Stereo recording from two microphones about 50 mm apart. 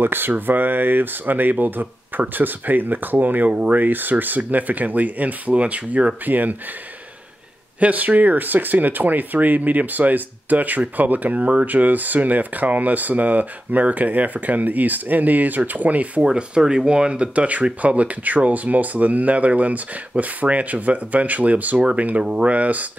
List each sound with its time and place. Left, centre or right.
0.0 s speech: right
7.8 s speech: right
16.3 s speech: centre